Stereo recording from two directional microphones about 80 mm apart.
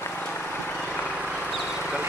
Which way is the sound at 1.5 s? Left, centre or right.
Centre.